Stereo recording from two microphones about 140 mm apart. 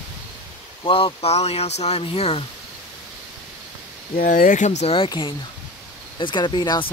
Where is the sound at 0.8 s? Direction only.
40° left (ahead or behind).